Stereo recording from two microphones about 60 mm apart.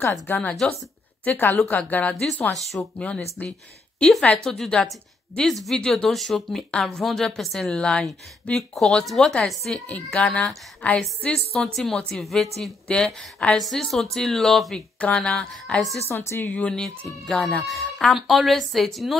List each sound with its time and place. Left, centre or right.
0.0 s a woman's voice: left
2.5 s speech: centre
3.0 s a woman's voice: left
4.5 s speech: centre
7.7 s speech: centre
8.5 s speech: centre
10.1 s a woman's voice: centre
11.3 s speech: centre
12.8 s speech: centre
15.0 s speech: centre
16.1 s speech: left
16.4 s speech: centre
17.3 s speech: centre